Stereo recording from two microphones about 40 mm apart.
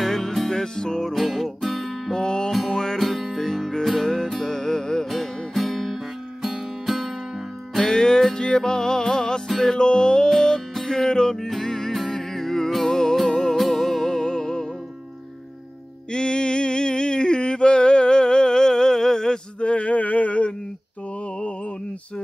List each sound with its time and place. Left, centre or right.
0.0 s music: centre
0.5 s music: centre
1.1 s music: centre
2.1 s music: centre
3.0 s music: centre
5.1 s music: centre
7.7 s music: centre
11.3 s music: centre
16.1 s music: left
19.6 s a sound: left
21.4 s music: left